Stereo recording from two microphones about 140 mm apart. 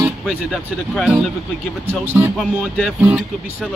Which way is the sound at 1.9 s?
15° right (ahead or behind).